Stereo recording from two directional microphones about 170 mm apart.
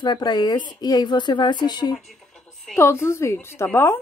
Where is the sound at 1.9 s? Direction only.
Centre (ahead or behind).